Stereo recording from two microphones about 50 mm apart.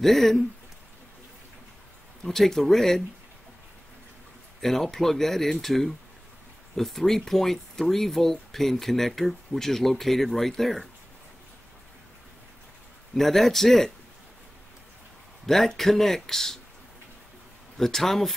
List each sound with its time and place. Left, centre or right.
0.0 s speech: centre
2.2 s speech: centre
4.6 s speech: centre
13.1 s speech: centre
15.4 s speech: centre
17.7 s speech: centre